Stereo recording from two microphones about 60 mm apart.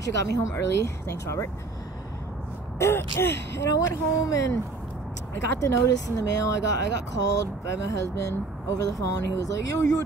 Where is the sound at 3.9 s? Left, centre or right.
Left.